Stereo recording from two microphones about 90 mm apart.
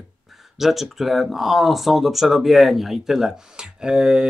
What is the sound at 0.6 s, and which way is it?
Speech, 5° right (ahead or behind).